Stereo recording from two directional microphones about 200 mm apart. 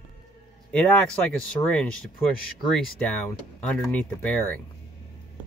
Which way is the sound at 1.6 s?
5° left (ahead or behind).